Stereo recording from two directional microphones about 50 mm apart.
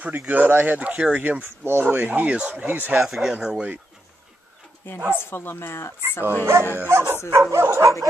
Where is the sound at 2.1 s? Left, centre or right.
Right.